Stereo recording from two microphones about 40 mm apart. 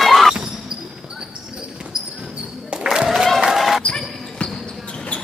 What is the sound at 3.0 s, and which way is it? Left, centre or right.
Applause, centre.